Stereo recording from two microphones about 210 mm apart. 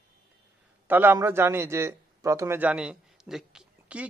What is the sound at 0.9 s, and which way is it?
A man's voice, 10° right (ahead or behind).